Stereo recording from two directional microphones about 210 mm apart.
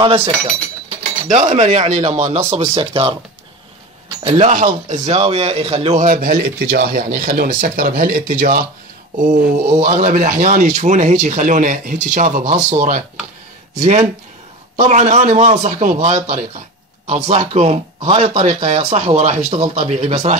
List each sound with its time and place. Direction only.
0.0 s a man's voice: 25° right (ahead or behind)
4.2 s speech: 20° right (ahead or behind)
4.5 s a man's voice: 40° right (ahead or behind)